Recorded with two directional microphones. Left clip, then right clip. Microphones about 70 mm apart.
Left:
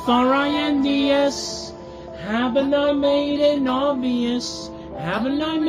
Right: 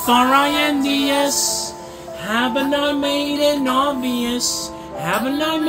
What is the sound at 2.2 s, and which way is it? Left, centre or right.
Music, right.